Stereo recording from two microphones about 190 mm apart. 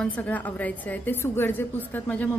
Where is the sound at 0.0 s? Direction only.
5° left (ahead or behind).